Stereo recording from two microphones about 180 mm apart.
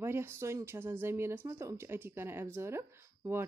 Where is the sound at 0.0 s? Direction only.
15° right (ahead or behind).